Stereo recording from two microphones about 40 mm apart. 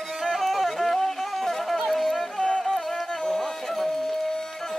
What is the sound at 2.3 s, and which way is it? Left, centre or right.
Music, centre.